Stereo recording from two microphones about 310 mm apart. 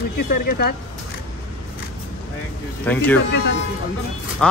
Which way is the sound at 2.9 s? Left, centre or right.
Centre.